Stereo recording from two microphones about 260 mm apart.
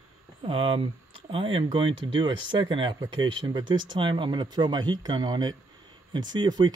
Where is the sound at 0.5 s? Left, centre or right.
Right.